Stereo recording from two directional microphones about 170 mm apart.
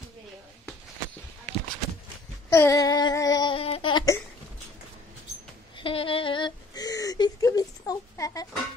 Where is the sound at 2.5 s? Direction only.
20° left (ahead or behind).